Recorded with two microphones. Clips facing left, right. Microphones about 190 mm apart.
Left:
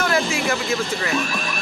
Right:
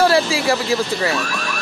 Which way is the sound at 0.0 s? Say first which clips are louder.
Right 5 dB; 30° right (ahead or behind).